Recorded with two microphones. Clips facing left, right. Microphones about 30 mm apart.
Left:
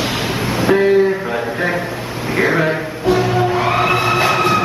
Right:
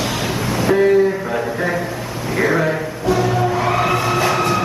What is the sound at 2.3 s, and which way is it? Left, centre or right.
Music, left.